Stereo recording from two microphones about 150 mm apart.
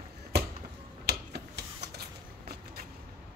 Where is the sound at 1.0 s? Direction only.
90° right.